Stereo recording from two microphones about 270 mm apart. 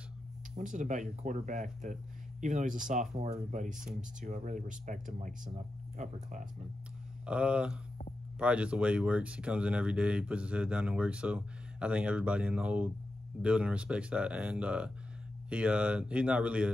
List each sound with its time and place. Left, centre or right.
0.6 s speech: right
7.2 s speech: centre